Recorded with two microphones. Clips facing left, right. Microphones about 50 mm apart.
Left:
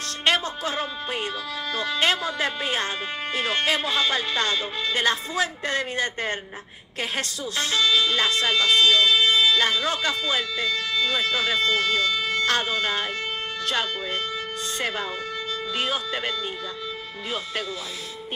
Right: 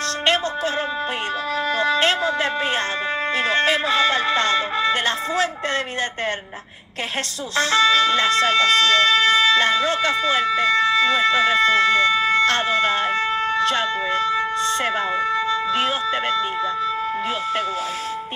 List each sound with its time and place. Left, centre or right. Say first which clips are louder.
2.2 s speech: right 5 dB; right
7.8 s speech: right 4 dB; right
14.8 s speech: right 7 dB; right
15.3 s wind instrument: right 8 dB; right